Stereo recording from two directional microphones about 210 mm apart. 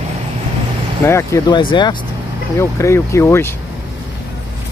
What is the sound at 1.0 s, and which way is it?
Speech, 15° left (ahead or behind).